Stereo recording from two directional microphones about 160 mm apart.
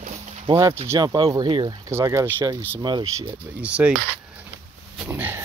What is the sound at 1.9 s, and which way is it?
Speech, 15° right (ahead or behind).